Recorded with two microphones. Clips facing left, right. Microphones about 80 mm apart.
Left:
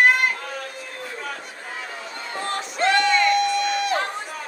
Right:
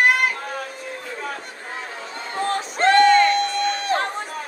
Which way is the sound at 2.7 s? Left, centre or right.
Right.